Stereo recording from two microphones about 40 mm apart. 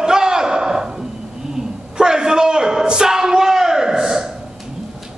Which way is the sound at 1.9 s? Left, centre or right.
Centre.